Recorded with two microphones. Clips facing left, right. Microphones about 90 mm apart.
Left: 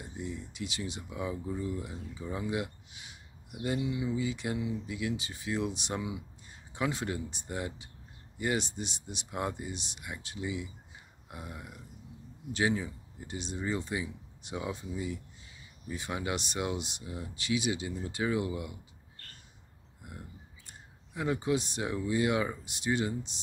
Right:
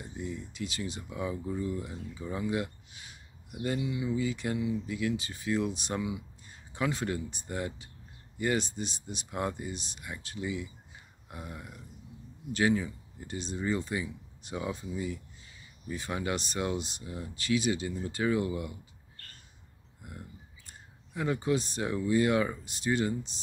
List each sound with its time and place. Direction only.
0.0 s speech: 15° left (ahead or behind)
20.1 s speech: 15° left (ahead or behind)